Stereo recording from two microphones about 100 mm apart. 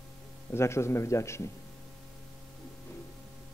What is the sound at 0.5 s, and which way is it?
A man's voice, 25° left (ahead or behind).